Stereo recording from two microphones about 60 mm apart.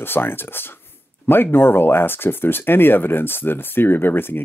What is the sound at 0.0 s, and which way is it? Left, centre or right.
Speech, left.